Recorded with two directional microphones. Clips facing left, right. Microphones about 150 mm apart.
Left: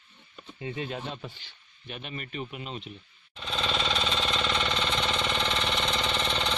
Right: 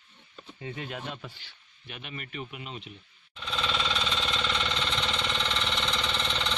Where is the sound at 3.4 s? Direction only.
40° left (ahead or behind).